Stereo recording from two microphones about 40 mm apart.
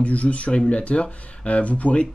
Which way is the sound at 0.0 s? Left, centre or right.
Left.